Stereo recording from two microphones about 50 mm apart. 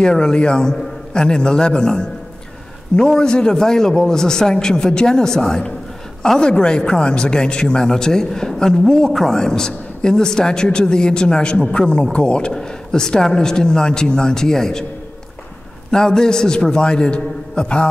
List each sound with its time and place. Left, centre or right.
0.0 s a man's voice: centre
15.9 s a man's voice: centre